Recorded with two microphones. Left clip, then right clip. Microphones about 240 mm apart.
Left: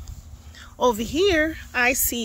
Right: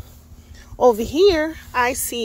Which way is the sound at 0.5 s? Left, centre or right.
Centre.